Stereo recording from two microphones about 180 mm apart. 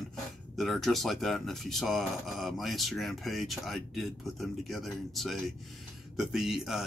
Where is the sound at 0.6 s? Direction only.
Centre (ahead or behind).